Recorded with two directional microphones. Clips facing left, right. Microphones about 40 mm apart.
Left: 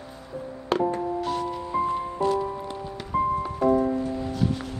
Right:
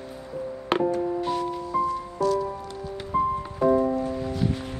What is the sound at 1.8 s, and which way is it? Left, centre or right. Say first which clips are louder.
Music: even; left.